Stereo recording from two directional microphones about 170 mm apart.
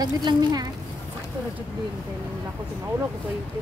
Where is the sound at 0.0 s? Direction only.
25° right (ahead or behind).